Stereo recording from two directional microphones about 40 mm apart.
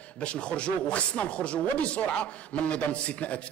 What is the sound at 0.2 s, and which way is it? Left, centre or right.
Speech, left.